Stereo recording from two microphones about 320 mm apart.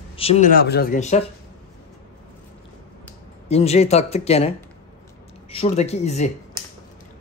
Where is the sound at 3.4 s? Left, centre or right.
Centre.